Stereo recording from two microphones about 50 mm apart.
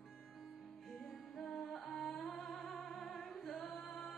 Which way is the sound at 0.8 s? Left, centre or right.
Centre.